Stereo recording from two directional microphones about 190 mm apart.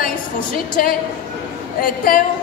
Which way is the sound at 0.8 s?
45° left (ahead or behind).